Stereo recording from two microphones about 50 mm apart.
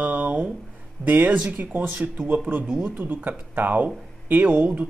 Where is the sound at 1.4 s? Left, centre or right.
Right.